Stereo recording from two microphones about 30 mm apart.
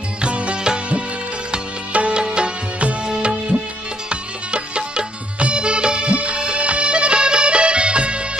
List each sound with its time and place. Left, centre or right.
0.2 s music: right
1.9 s music: right
2.1 s music: right